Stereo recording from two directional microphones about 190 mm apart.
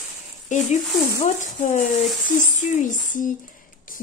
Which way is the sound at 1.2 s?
40° left (ahead or behind).